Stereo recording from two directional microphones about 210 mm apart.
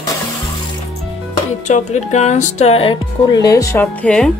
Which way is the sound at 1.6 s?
35° left (ahead or behind).